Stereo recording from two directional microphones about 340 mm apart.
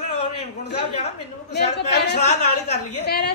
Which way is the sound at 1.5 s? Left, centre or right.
Left.